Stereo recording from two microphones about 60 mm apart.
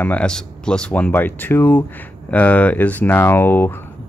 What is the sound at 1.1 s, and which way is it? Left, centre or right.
Speech, left.